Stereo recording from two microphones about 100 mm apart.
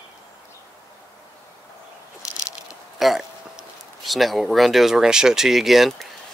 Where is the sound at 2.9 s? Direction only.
Centre (ahead or behind).